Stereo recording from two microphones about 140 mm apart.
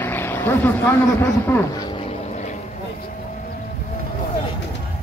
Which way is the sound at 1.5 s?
20° left (ahead or behind).